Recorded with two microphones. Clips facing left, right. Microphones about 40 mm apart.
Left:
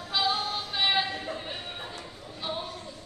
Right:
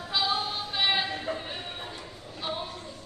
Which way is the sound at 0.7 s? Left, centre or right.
Centre.